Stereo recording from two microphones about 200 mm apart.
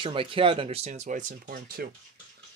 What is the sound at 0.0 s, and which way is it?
Speech, 25° right (ahead or behind).